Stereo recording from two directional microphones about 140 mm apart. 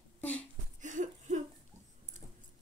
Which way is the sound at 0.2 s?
10° left (ahead or behind).